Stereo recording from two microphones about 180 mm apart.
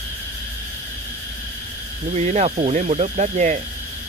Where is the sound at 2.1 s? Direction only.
40° right (ahead or behind).